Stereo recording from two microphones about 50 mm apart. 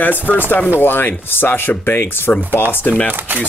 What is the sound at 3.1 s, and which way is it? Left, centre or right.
Speech, right.